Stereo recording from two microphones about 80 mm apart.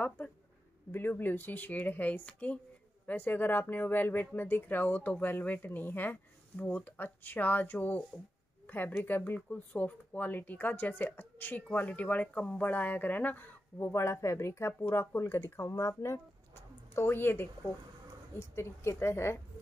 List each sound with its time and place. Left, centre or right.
0.9 s speech: left
13.8 s a woman's voice: left